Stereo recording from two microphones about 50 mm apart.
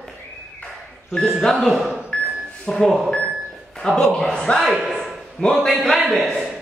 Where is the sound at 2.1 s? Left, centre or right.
Centre.